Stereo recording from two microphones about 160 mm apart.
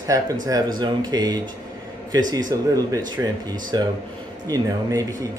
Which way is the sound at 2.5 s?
25° right (ahead or behind).